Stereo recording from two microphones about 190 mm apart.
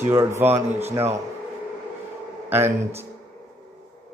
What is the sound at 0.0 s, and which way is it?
Speech, 15° right (ahead or behind).